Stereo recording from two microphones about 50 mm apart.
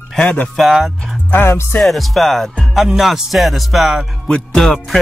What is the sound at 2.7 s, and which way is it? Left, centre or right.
Music, centre.